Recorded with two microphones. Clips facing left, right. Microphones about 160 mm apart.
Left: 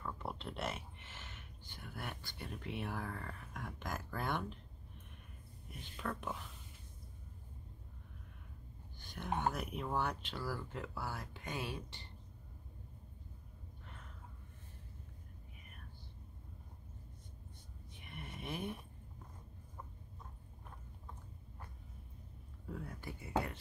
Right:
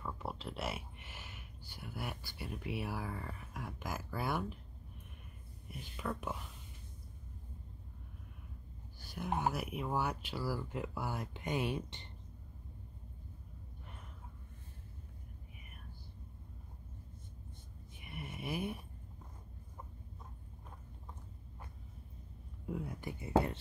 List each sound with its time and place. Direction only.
0.0 s speech: 5° right (ahead or behind)
5.9 s speech: 10° right (ahead or behind)
9.0 s speech: 5° right (ahead or behind)
18.0 s a sound: 10° right (ahead or behind)
22.7 s a sound: 15° right (ahead or behind)
23.3 s speech: 30° right (ahead or behind)